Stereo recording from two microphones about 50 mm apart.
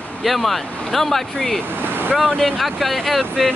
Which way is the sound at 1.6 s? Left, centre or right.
Right.